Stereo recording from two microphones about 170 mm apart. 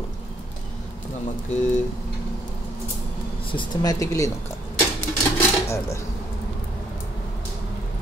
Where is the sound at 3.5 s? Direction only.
25° left (ahead or behind).